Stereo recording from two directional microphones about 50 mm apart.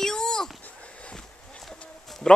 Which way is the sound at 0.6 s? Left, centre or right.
Left.